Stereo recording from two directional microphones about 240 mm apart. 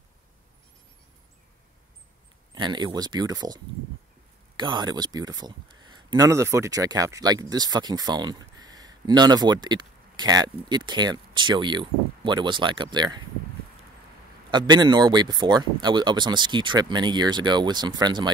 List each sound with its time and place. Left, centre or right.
2.5 s a man's voice: centre
14.5 s a man's voice: centre